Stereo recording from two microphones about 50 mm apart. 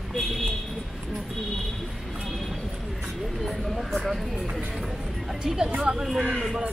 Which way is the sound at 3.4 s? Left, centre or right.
Centre.